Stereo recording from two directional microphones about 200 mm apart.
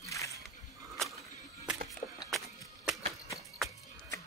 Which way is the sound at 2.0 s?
40° left (ahead or behind).